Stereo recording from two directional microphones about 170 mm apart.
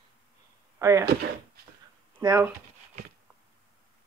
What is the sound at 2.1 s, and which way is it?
Speech, 20° right (ahead or behind).